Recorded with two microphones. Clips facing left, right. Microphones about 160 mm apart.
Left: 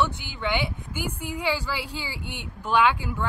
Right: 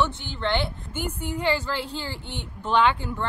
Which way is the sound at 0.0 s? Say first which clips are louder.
Right 1 dB; 10° left (ahead or behind).